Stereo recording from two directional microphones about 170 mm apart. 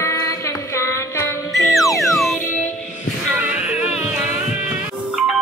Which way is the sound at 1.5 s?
Centre (ahead or behind).